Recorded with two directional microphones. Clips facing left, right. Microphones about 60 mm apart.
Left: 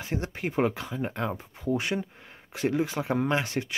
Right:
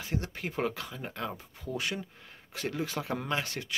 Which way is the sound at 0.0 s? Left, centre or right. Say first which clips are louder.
Left 4 dB; left.